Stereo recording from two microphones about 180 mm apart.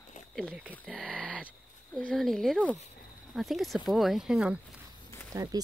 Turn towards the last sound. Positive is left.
turn(degrees=-20)  # may be behind; listen again after turning